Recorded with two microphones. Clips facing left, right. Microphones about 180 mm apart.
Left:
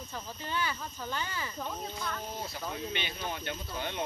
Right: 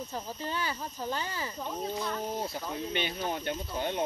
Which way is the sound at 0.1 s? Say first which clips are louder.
Left 2 dB; 35° right (ahead or behind).